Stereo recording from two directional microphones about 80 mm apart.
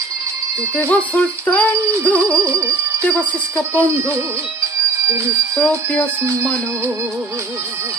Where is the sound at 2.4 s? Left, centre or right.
Right.